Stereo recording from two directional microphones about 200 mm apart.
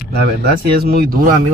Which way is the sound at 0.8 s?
50° right (ahead or behind).